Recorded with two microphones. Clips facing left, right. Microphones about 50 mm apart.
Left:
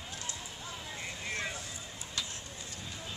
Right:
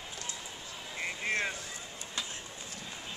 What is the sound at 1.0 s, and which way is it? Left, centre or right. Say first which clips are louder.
Vehicle: right 7 dB; right.